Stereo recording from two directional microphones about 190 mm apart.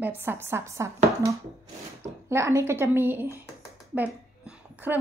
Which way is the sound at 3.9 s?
10° right (ahead or behind).